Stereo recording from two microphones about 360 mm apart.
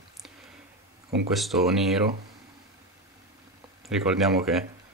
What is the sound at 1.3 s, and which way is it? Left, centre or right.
Speech, centre.